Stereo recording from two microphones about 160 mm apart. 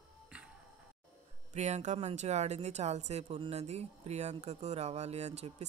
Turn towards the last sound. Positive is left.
turn(degrees=-45)  # may be behind; listen again after turning